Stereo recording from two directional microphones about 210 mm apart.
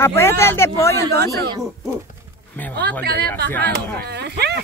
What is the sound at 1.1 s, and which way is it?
Speech, 50° right (ahead or behind).